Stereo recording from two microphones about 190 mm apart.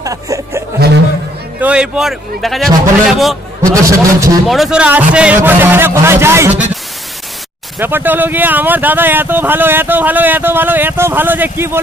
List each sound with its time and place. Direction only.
0.0 s a man's voice: 15° right (ahead or behind); by 3.3 s centre (ahead or behind)
3.7 s speech: 15° right (ahead or behind)
4.5 s speech: centre (ahead or behind)
7.8 s speech: 10° right (ahead or behind)